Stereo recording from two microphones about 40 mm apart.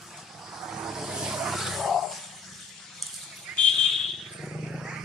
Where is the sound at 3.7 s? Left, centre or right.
Centre.